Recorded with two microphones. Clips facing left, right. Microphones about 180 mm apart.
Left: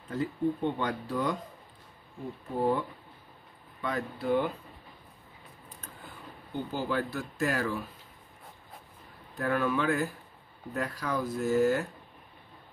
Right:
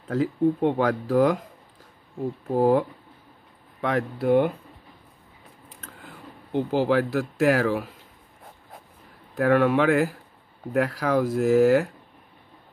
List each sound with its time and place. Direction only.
0.1 s speech: 90° right
2.5 s speech: 90° right
3.8 s speech: 80° right
6.0 s speech: 85° right
9.4 s speech: 75° right (ahead or behind)